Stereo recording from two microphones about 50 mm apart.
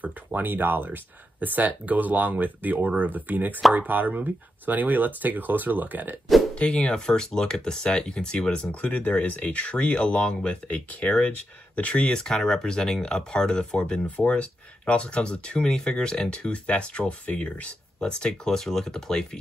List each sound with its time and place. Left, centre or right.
0.0 s speech: right
6.5 s speech: left
8.8 s speech: left
14.0 s speech: left
18.0 s speech: centre